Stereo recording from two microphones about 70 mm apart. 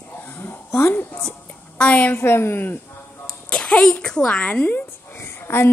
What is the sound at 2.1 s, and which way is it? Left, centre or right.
Speech, left.